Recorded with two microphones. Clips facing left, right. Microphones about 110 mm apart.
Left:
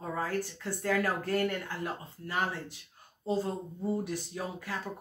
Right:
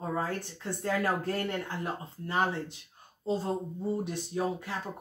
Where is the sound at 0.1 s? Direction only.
25° right (ahead or behind).